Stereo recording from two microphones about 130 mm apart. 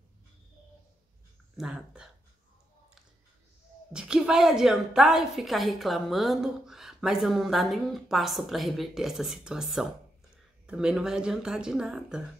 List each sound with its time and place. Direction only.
1.6 s a woman's voice: 5° right (ahead or behind)
3.9 s a woman's voice: 5° right (ahead or behind)